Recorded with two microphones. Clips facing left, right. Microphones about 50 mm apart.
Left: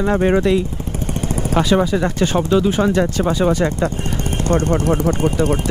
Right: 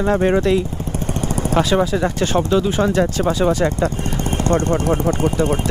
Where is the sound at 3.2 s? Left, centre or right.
Centre.